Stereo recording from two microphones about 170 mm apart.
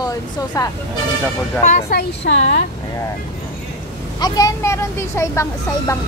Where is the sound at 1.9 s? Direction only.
70° left (ahead or behind).